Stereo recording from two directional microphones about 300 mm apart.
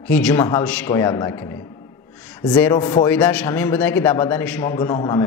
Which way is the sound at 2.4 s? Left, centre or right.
Centre.